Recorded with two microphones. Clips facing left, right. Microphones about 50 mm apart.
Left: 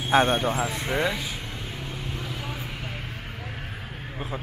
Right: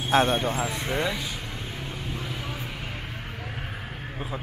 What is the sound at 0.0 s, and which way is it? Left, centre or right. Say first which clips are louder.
Speech: left 1 dB; centre.